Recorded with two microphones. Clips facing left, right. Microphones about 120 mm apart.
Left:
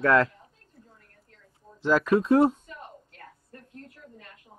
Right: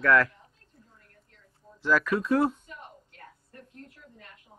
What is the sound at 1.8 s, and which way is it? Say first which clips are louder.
Speech: left 4 dB; 25° left (ahead or behind).